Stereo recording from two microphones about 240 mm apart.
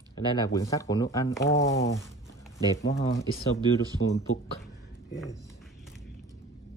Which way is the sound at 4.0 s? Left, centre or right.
Left.